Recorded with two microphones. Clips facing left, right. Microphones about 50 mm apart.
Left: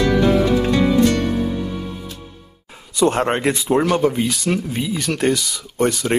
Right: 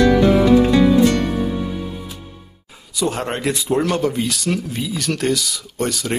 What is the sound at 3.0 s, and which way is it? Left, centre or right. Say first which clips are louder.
Speech: left 5 dB; left.